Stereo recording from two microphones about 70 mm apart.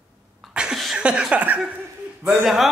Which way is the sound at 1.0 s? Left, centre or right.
Centre.